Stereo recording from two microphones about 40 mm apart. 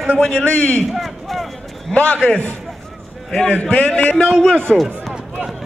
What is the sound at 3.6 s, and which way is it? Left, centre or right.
Speech, left.